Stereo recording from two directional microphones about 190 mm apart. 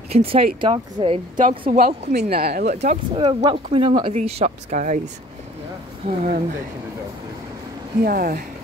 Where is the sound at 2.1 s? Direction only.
55° right (ahead or behind).